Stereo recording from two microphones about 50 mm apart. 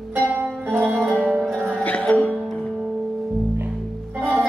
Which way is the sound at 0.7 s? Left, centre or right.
Right.